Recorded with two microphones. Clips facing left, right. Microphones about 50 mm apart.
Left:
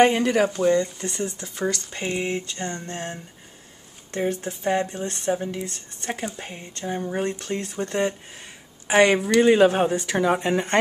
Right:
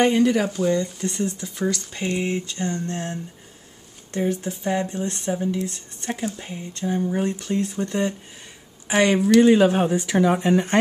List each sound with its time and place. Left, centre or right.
0.0 s speech: centre
4.3 s speech: centre
5.4 s speech: centre
7.2 s speech: centre